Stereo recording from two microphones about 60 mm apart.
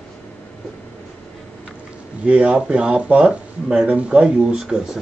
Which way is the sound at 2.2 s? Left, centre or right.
Right.